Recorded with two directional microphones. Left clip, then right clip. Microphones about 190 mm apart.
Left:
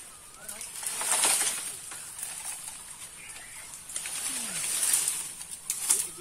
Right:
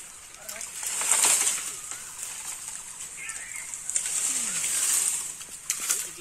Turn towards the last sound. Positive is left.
turn(degrees=80)